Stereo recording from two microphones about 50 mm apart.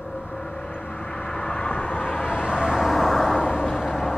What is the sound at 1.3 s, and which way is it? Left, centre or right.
Vehicle, centre.